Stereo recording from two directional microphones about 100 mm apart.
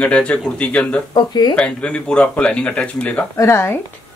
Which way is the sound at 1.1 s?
45° left (ahead or behind).